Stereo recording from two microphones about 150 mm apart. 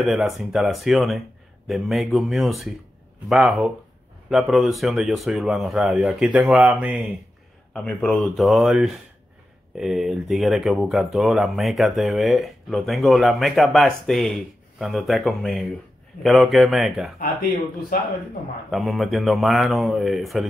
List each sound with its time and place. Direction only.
0.0 s speech: centre (ahead or behind)
7.7 s speech: 10° left (ahead or behind)
17.2 s speech: 75° left (ahead or behind)
18.7 s speech: centre (ahead or behind)